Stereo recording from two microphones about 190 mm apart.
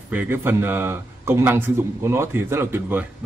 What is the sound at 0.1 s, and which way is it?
Speech, 10° right (ahead or behind).